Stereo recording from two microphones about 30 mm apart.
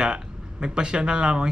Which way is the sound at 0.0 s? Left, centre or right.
Right.